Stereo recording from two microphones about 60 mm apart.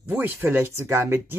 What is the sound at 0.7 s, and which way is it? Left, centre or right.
Speech, right.